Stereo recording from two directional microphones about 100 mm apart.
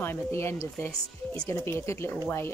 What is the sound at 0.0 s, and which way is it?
Speech, 25° left (ahead or behind).